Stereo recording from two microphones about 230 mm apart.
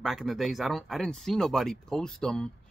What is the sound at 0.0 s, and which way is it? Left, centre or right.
Speech, centre.